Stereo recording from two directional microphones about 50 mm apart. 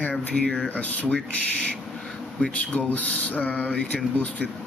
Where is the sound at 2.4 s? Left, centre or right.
Left.